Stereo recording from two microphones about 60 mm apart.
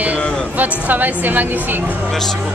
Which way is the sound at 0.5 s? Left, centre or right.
Right.